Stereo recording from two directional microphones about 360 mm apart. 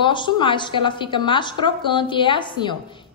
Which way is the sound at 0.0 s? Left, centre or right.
Centre.